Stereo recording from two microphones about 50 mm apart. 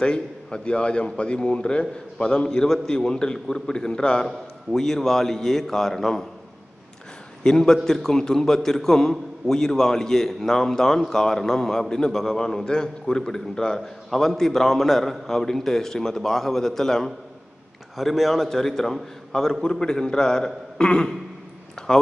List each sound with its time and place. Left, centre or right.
0.0 s a man's voice: left; by 6.2 s centre
7.4 s a man's voice: centre
21.8 s a sound: centre